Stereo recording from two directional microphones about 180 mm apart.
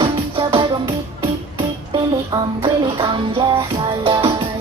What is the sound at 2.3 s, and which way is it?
Music, 25° right (ahead or behind).